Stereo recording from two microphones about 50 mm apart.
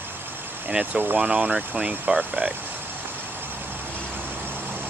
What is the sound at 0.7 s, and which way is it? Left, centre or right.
Speech, right.